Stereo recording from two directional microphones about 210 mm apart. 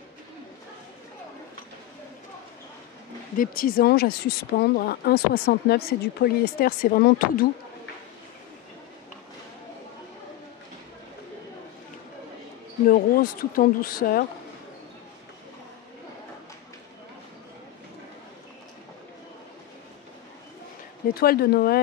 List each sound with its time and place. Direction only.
3.3 s speech: 40° left (ahead or behind)
12.8 s speech: 45° left (ahead or behind)
21.1 s speech: 45° left (ahead or behind)